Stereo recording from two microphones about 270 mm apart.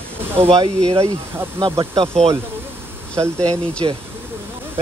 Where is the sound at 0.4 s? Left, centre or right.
Right.